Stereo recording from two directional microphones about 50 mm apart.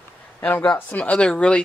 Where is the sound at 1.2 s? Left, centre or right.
Centre.